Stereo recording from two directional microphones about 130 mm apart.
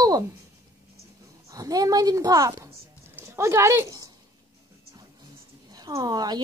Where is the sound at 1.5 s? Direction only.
30° right (ahead or behind).